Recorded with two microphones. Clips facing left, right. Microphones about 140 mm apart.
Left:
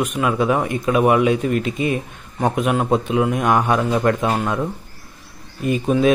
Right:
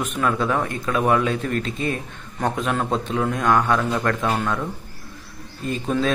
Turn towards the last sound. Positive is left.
turn(degrees=15)  # may be behind; listen again after turning